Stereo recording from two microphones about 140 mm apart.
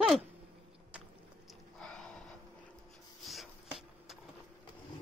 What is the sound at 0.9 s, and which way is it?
Biting, 5° right (ahead or behind).